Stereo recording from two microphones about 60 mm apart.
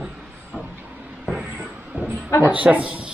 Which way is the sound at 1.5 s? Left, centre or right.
Right.